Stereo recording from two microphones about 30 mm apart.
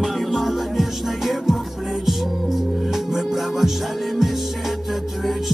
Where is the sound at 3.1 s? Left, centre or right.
Centre.